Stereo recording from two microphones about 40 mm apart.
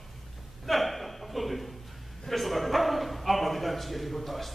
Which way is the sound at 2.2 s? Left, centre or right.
Centre.